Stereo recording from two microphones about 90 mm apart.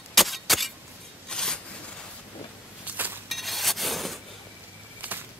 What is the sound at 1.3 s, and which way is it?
Filing, 5° left (ahead or behind).